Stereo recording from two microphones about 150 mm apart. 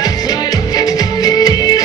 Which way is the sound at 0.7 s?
25° left (ahead or behind).